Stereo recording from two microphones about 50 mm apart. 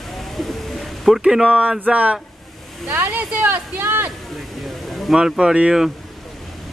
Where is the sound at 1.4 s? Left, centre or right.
Right.